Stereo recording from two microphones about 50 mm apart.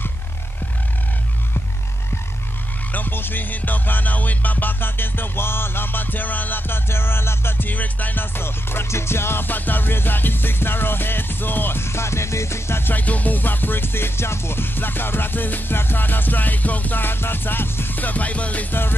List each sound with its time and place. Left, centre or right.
2.9 s music: left
6.9 s music: left
12.9 s music: left
17.9 s music: left
18.7 s music: left